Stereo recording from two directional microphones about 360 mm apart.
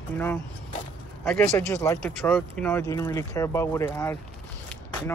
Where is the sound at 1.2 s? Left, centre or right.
Centre.